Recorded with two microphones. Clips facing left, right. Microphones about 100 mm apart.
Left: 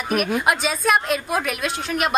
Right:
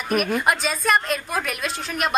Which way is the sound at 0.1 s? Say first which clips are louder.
Even; centre (ahead or behind).